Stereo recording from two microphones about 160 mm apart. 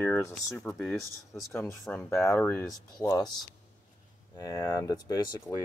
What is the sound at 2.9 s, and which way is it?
Speech, 25° left (ahead or behind).